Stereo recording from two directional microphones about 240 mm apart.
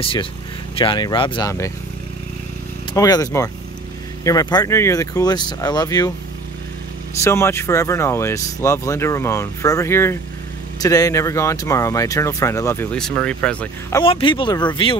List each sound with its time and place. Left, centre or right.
0.0 s speech: left
2.9 s speech: centre
7.2 s speech: centre